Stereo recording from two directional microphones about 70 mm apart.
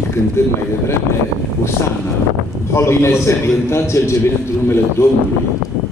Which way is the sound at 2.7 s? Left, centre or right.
Left.